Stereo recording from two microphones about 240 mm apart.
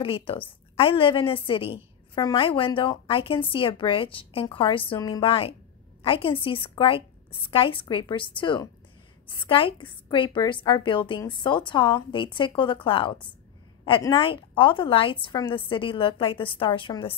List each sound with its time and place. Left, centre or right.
0.0 s a woman's voice: left